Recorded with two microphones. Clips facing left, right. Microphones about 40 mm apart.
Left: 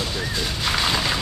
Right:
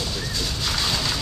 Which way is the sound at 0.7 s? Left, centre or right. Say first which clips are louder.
Left 4 dB; left.